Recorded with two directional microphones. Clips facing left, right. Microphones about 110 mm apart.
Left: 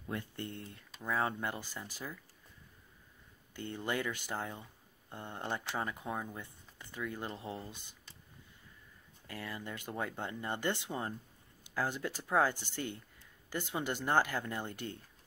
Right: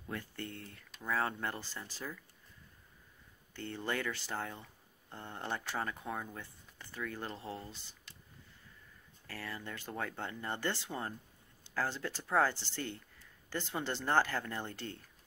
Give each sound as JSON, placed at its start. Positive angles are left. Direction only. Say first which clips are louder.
{"t": 0.1, "sound": "speech", "louder": "left 2 dB", "side_deg": 20}
{"t": 3.5, "sound": "speech", "louder": "left 1 dB", "side_deg": 15}
{"t": 9.3, "sound": "speech", "louder": "left 1 dB", "side_deg": 15}